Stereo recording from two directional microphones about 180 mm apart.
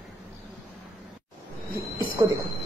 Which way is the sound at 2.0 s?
25° right (ahead or behind).